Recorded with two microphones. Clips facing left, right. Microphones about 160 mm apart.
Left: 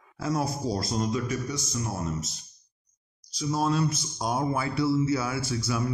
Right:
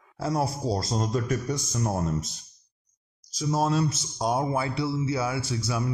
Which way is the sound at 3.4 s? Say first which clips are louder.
Right 1 dB; 40° right (ahead or behind).